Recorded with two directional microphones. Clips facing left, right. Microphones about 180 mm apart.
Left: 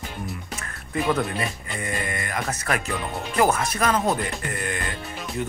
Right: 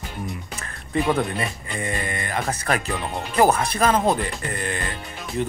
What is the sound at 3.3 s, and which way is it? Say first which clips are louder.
Speech: right 3 dB; 35° right (ahead or behind).